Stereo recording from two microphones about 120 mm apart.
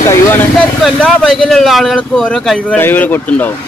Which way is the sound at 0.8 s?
5° left (ahead or behind).